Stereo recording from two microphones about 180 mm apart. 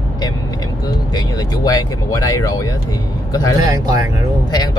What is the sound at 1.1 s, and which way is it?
Speech, 20° left (ahead or behind).